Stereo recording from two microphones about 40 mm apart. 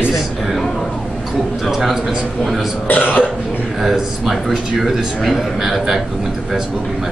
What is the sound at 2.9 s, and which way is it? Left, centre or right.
Cough, left.